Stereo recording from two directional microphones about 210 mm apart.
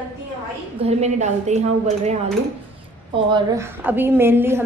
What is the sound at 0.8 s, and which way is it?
A woman's voice, 30° right (ahead or behind).